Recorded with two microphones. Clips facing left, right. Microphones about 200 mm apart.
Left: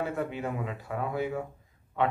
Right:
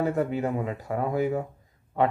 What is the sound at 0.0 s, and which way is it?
Speech, 40° right (ahead or behind).